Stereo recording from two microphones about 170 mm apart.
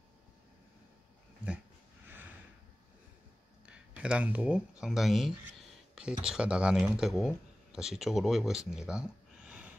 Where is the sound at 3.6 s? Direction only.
5° right (ahead or behind).